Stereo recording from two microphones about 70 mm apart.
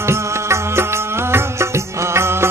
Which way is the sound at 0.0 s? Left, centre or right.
Right.